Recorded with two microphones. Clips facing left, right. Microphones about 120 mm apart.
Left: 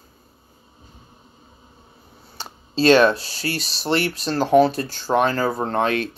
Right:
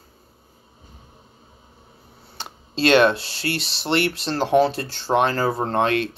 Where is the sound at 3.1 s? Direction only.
25° right (ahead or behind).